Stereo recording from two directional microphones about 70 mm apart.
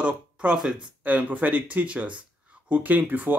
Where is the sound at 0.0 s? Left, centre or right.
Centre.